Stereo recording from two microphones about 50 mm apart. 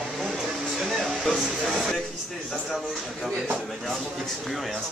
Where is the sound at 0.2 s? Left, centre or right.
Centre.